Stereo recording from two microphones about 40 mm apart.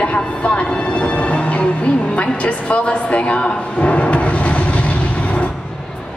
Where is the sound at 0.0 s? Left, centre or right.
Left.